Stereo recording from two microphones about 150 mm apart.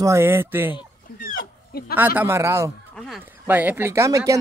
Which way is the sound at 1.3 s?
90° left.